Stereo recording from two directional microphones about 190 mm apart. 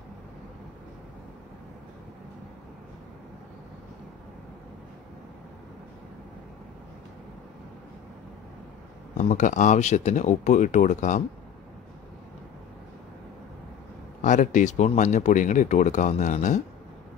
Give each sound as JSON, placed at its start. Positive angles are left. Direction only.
{"t": 9.1, "sound": "speech", "side_deg": 40}
{"t": 14.2, "sound": "speech", "side_deg": 40}